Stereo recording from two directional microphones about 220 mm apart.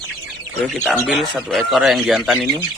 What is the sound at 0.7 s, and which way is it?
A man's voice, centre (ahead or behind).